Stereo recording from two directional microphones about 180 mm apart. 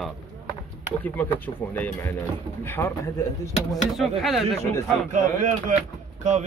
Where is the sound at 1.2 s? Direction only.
10° left (ahead or behind).